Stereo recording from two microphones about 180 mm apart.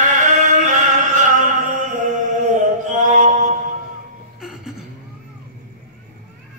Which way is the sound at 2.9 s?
45° right (ahead or behind).